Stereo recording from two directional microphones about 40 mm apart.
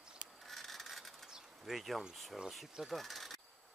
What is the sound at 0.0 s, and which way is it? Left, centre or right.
Rub, right.